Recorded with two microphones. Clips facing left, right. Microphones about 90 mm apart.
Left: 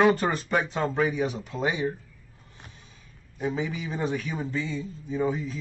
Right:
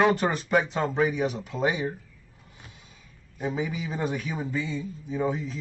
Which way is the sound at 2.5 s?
5° right (ahead or behind).